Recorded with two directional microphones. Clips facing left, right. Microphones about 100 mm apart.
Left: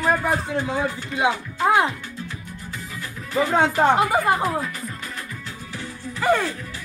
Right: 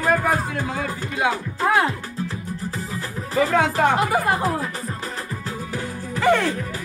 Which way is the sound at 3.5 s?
30° left (ahead or behind).